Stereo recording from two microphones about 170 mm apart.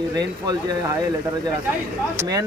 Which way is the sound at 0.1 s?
25° right (ahead or behind).